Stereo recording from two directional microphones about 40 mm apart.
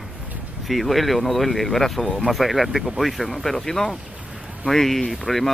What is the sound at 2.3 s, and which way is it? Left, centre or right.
Speech, centre.